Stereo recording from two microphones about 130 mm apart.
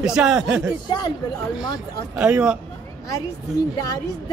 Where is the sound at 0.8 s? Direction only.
35° left (ahead or behind).